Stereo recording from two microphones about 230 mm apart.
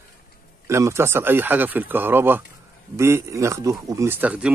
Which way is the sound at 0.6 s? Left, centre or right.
Centre.